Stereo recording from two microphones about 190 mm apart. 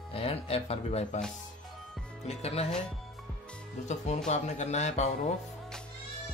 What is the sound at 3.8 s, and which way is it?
Speech, 40° left (ahead or behind).